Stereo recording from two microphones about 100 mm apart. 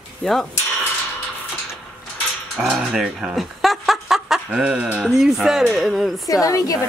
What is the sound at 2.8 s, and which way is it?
Speech, 5° right (ahead or behind).